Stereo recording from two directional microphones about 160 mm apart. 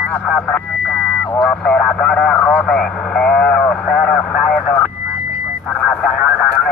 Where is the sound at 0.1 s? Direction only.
5° left (ahead or behind).